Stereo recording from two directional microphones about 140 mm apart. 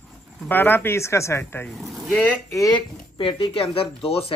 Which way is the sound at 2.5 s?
25° left (ahead or behind).